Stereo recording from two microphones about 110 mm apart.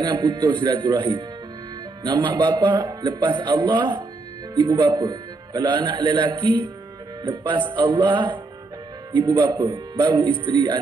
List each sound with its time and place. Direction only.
0.0 s a man's voice: 40° right (ahead or behind)